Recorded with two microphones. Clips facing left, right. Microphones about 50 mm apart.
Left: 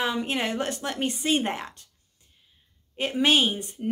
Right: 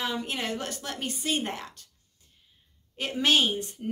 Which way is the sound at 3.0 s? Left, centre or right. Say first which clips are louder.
Left 2 dB; left.